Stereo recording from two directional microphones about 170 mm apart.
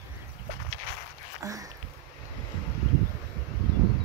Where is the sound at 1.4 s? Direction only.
20° right (ahead or behind).